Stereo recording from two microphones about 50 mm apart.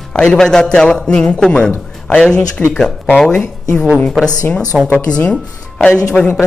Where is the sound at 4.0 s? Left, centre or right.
Centre.